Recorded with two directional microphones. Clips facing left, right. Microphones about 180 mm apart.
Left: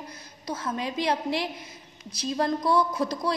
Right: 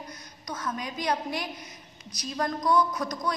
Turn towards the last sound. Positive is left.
turn(degrees=30)  # may be behind; listen again after turning